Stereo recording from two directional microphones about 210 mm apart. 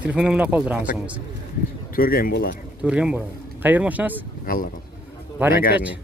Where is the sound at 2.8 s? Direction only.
5° right (ahead or behind).